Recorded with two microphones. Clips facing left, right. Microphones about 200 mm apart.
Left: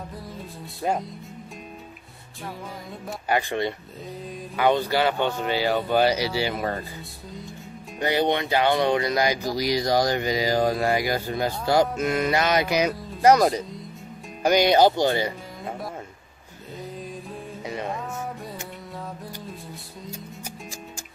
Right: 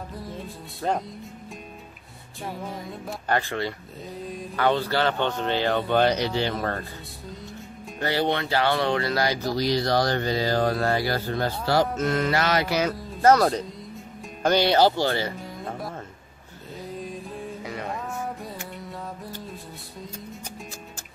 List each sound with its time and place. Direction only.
0.8 s speech: 10° left (ahead or behind)
3.3 s speech: 15° left (ahead or behind)
8.0 s speech: 15° left (ahead or behind)